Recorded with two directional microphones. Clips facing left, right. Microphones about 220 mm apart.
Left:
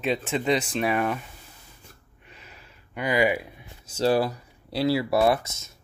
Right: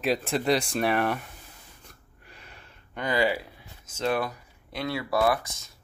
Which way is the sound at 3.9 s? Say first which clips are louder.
Left 5 dB; 30° left (ahead or behind).